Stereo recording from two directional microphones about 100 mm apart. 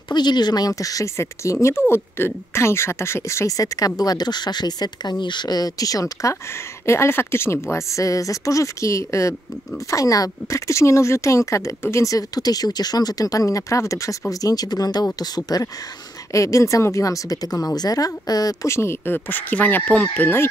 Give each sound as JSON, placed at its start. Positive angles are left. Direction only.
{"t": 0.1, "sound": "speech", "side_deg": 45}
{"t": 6.9, "sound": "speech", "side_deg": 25}